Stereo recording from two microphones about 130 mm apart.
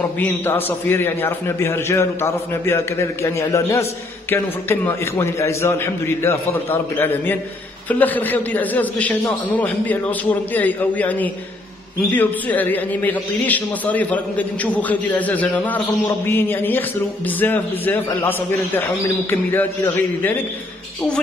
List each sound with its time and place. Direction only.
0.2 s a man's voice: 15° left (ahead or behind)
19.3 s a man's voice: 15° left (ahead or behind)